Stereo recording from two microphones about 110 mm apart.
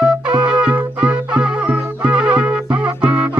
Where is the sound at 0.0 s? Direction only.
10° right (ahead or behind).